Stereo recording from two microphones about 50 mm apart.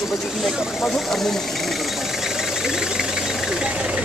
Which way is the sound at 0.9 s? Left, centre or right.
Centre.